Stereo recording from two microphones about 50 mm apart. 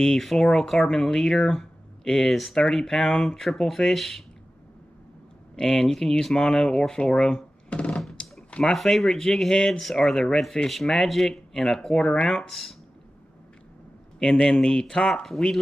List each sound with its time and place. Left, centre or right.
0.0 s speech: centre
5.6 s speech: centre
7.9 s a sound: centre
8.5 s a sound: left
8.7 s speech: centre
12.4 s speech: centre
14.2 s speech: centre